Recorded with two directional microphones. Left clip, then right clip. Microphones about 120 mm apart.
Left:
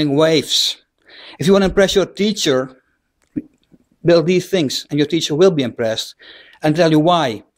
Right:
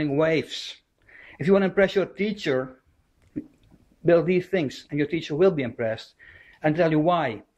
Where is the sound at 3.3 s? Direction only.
30° left (ahead or behind).